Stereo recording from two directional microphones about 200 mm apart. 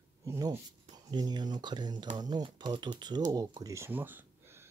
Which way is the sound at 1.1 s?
20° right (ahead or behind).